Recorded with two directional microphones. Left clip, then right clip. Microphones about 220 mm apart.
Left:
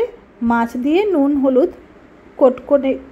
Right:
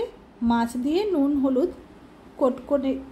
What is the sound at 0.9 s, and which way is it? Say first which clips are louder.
A woman's voice: left 8 dB; 10° left (ahead or behind).